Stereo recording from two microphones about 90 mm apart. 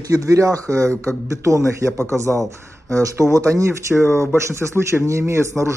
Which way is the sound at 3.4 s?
30° right (ahead or behind).